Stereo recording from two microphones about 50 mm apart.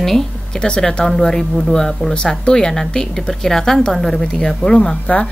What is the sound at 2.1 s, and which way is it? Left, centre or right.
Speech, centre.